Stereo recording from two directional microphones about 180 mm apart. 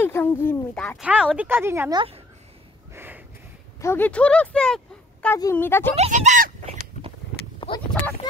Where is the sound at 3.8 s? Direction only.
10° left (ahead or behind).